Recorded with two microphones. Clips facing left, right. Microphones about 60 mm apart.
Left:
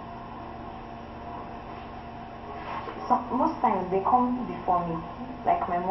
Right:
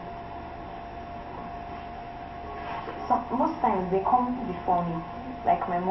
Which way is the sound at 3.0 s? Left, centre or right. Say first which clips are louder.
Left 1 dB; centre.